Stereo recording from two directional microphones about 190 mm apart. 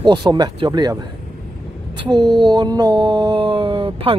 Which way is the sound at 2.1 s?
20° right (ahead or behind).